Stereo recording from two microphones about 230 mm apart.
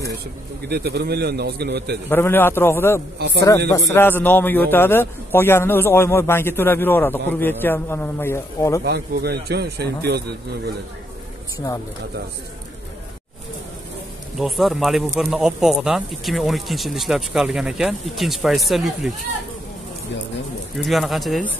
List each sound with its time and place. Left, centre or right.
0.7 s a man's voice: right
2.0 s a man's voice: centre
3.2 s a man's voice: right
3.9 s a man's voice: centre
8.8 s a man's voice: right
14.4 s speech: centre
20.7 s speech: centre